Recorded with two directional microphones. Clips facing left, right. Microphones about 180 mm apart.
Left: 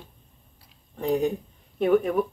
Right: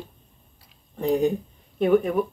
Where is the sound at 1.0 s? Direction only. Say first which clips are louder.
Right 2 dB; centre (ahead or behind).